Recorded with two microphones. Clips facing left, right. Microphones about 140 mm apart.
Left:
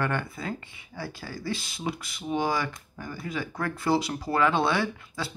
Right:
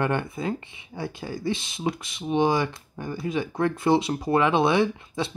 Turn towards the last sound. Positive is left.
turn(degrees=-25)  # may be behind; listen again after turning